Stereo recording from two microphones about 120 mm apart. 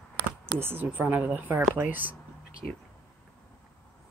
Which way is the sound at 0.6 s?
20° right (ahead or behind).